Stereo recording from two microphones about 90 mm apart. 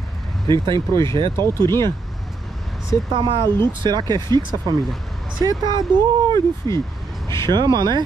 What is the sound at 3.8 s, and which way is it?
Speech, 50° right (ahead or behind).